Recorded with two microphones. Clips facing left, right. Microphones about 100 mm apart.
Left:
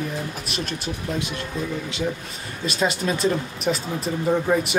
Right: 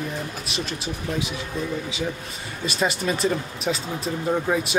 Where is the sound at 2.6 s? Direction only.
Centre (ahead or behind).